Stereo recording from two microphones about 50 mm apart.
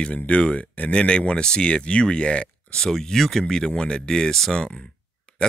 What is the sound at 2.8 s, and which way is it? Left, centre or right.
Speech, centre.